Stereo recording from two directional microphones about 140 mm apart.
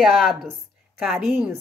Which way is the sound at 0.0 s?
Centre (ahead or behind).